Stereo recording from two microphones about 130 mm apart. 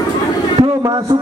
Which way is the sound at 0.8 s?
30° right (ahead or behind).